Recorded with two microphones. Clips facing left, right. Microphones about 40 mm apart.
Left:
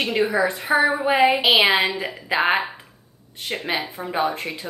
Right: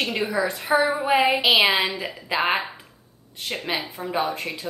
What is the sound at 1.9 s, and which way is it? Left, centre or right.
Speech, centre.